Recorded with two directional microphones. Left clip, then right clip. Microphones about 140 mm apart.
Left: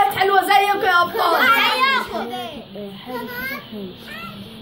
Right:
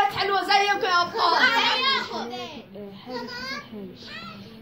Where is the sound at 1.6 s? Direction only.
15° right (ahead or behind).